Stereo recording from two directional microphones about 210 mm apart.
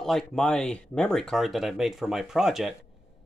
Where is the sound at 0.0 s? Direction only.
Centre (ahead or behind).